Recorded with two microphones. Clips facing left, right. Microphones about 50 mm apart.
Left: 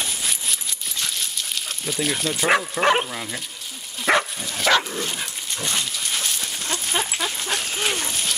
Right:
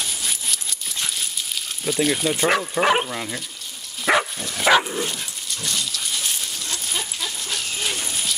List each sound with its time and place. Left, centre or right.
0.2 s coin: centre
1.1 s dog: centre
2.4 s speech: centre
4.0 s dog: centre
5.1 s dog: left
6.1 s dog: left